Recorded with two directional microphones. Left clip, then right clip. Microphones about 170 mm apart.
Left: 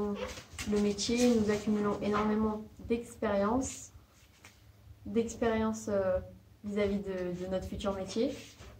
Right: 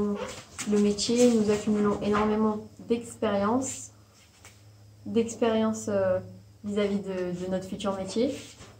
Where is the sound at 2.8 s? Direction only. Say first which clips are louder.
Right 5 dB; 15° left (ahead or behind).